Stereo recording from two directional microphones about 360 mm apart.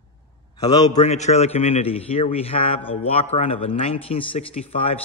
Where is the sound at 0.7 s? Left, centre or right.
Centre.